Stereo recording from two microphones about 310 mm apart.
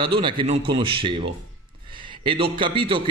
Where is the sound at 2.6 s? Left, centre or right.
Centre.